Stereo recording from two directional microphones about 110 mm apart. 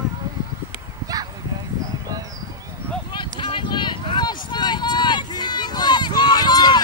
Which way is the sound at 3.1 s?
45° left (ahead or behind).